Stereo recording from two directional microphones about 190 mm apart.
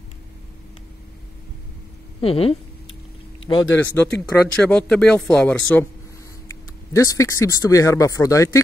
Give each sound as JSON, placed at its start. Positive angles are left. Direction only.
{"t": 2.1, "sound": "speech", "side_deg": 30}
{"t": 3.7, "sound": "speech", "side_deg": 10}
{"t": 6.9, "sound": "speech", "side_deg": 15}